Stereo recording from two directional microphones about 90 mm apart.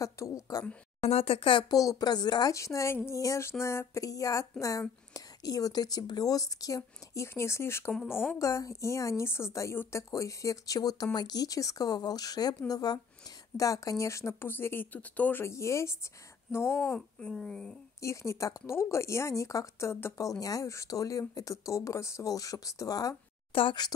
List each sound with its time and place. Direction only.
0.0 s speech: 40° left (ahead or behind)
1.1 s speech: 90° left
1.6 s speech: 40° left (ahead or behind)
2.5 s speech: 35° left (ahead or behind); by 15.4 s 15° left (ahead or behind)
15.4 s speech: 35° left (ahead or behind)
17.2 s speech: 5° left (ahead or behind)
18.0 s speech: 35° left (ahead or behind)
23.5 s speech: 80° left